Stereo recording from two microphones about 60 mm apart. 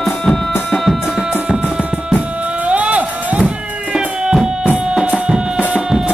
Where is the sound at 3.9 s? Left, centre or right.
Centre.